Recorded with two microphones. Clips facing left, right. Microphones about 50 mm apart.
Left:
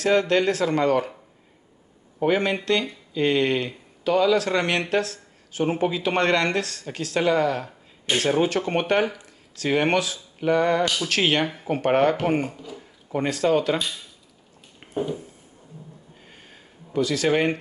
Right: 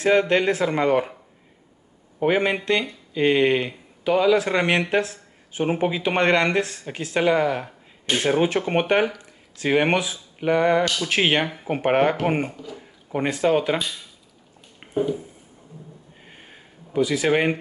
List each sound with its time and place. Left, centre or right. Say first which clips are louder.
0.0 s speech: right 1 dB; right
2.1 s speech: right 1 dB; centre
12.5 s speech: right 1 dB; centre
13.1 s speech: right 1 dB; centre
16.3 s a sound: right 4 dB; right